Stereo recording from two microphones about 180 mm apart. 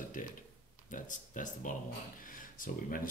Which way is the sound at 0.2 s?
50° left (ahead or behind).